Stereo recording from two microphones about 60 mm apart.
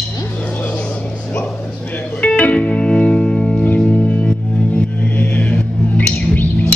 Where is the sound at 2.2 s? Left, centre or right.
Left.